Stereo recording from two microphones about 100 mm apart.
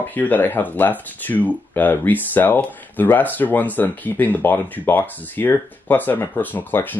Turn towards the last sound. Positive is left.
turn(degrees=20)  # may be behind; listen again after turning